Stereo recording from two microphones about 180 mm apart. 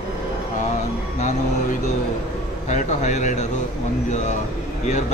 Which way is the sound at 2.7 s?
40° left (ahead or behind).